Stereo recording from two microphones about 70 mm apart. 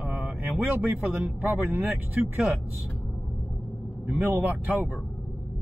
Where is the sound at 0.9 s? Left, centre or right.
Right.